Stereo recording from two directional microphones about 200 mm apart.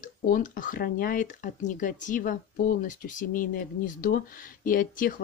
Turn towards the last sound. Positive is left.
turn(degrees=45)  # may be behind; listen again after turning